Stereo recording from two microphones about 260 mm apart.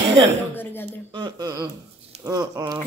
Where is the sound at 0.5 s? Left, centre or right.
Centre.